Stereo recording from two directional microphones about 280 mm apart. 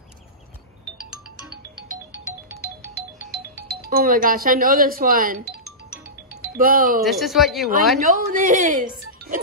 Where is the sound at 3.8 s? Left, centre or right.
Right.